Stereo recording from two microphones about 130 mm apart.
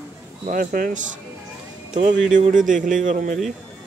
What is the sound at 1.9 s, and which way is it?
A man's voice, 75° right (ahead or behind).